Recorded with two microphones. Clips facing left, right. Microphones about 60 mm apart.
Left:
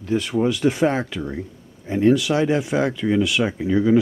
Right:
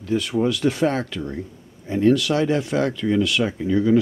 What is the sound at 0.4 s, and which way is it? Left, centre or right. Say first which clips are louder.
Speech: left 2 dB; centre.